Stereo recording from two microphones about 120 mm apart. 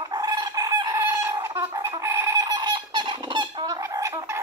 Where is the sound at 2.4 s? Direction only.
35° right (ahead or behind).